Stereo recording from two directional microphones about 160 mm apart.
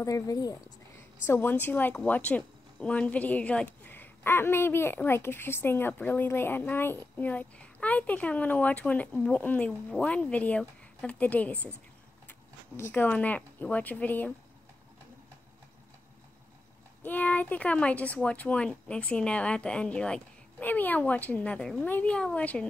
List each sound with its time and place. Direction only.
0.0 s speech: 20° left (ahead or behind)
17.0 s speech: 10° left (ahead or behind)